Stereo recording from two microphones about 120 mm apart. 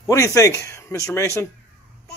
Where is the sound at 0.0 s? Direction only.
25° left (ahead or behind).